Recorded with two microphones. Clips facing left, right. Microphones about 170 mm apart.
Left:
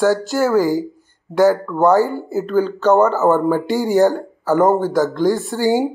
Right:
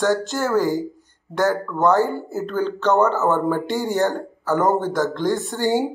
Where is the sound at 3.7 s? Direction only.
45° left (ahead or behind).